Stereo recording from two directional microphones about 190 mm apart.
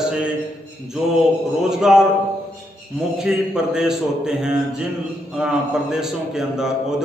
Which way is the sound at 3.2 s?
5° right (ahead or behind).